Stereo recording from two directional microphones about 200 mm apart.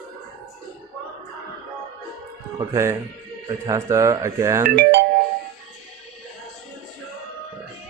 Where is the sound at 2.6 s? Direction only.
15° right (ahead or behind).